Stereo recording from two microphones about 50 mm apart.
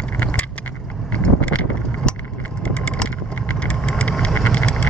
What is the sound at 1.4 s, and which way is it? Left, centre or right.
Vehicle, left.